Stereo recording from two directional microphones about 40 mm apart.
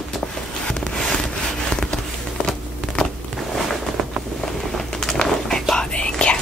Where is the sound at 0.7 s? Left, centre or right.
Centre.